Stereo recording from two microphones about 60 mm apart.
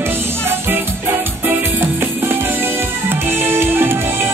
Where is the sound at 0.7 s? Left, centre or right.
Right.